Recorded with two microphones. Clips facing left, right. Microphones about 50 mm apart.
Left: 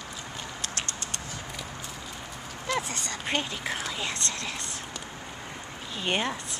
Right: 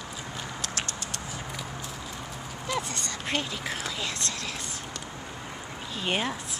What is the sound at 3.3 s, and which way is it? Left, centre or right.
Speech, centre.